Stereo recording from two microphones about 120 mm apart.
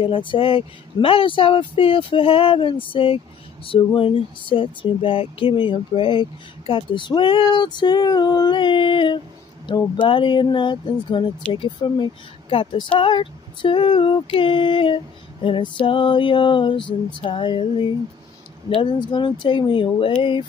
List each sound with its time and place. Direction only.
0.0 s speech: 45° left (ahead or behind)